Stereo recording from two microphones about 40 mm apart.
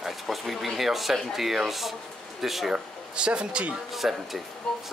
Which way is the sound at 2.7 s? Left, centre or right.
Right.